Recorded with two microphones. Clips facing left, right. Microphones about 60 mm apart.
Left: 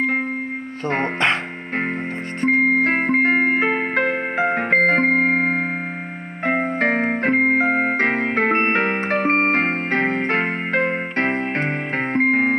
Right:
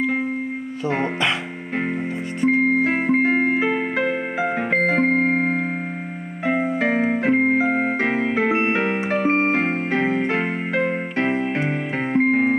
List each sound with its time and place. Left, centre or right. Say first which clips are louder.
0.8 s speech: left 2 dB; left
2.4 s music: left 1 dB; left
6.4 s keyboard: left 1 dB; left